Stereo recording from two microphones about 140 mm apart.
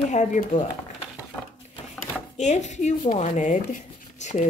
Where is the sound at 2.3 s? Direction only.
55° left (ahead or behind).